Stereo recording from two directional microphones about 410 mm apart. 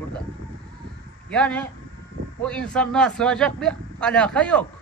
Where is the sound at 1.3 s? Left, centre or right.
Centre.